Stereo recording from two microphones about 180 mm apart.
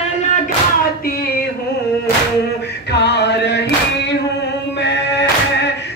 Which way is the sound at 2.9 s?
70° left (ahead or behind).